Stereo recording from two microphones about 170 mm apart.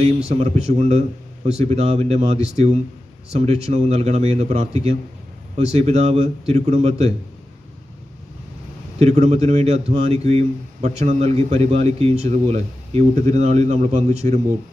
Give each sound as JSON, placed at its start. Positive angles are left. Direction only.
{"t": 0.3, "sound": "a man's voice", "side_deg": -40}
{"t": 9.0, "sound": "a man's voice", "side_deg": -40}